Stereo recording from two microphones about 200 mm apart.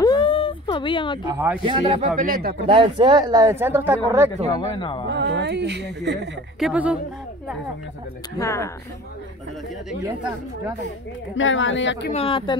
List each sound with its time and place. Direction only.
0.0 s a sound: 25° left (ahead or behind)
1.2 s speech: 15° right (ahead or behind)
1.6 s speech: 25° right (ahead or behind)
2.0 s speech: 40° right (ahead or behind)
2.6 s speech: 25° right (ahead or behind)
4.6 s speech: 25° left (ahead or behind)
5.1 s a woman's voice: 55° right (ahead or behind)
6.6 s speech: 5° right (ahead or behind)
8.4 s speech: 15° left (ahead or behind)
11.3 s speech: 70° left (ahead or behind)
12.1 s speech: 25° left (ahead or behind)